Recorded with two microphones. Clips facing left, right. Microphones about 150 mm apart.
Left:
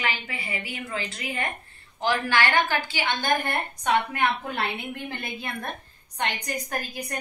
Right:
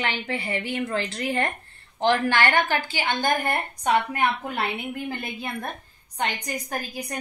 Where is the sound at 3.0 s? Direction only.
45° right (ahead or behind).